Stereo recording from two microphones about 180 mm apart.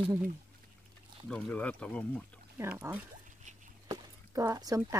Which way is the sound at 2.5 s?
15° right (ahead or behind).